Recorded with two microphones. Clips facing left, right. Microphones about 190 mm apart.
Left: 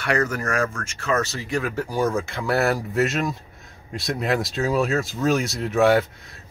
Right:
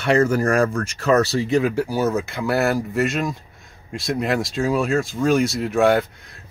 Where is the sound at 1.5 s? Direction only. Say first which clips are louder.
Right 4 dB; 15° right (ahead or behind).